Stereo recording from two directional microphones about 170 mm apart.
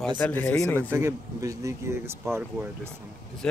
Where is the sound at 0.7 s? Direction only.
15° right (ahead or behind).